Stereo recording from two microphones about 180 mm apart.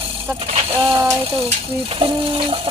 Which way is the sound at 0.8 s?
20° right (ahead or behind).